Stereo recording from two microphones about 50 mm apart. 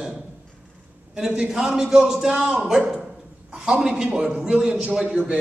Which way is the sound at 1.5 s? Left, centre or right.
Centre.